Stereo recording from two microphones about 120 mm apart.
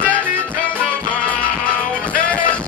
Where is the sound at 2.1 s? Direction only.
10° left (ahead or behind).